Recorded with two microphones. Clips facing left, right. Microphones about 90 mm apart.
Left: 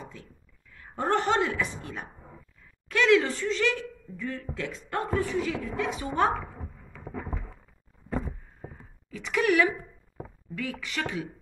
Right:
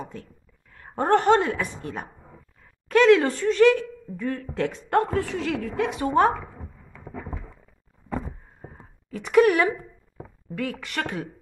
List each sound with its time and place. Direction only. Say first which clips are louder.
0.0 s a woman's voice: right 7 dB; 50° right (ahead or behind)
9.1 s speech: right 7 dB; 50° right (ahead or behind)
10.5 s speech: right 4 dB; 55° right (ahead or behind)